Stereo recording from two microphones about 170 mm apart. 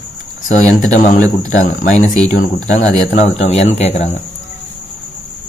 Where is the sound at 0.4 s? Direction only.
50° left (ahead or behind).